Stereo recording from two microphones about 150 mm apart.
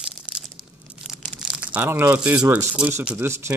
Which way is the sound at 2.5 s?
10° right (ahead or behind).